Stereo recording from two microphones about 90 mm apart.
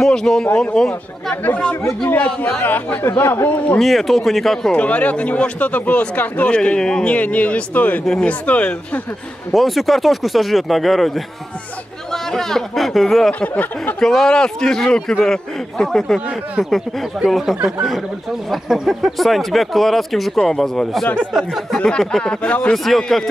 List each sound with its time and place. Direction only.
0.0 s speech: 5° left (ahead or behind)
1.3 s speech: 20° left (ahead or behind)
3.8 s speech: centre (ahead or behind)
4.7 s speech: 15° left (ahead or behind)
9.5 s speech: centre (ahead or behind)
13.3 s speech: 15° left (ahead or behind)
13.9 s speech: 5° left (ahead or behind)
16.3 s speech: 5° right (ahead or behind)
17.6 s speech: 10° right (ahead or behind)
18.5 s speech: centre (ahead or behind)
21.7 s speech: 10° left (ahead or behind)